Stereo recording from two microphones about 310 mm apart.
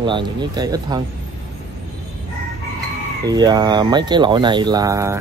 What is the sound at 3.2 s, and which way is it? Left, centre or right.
Speech, centre.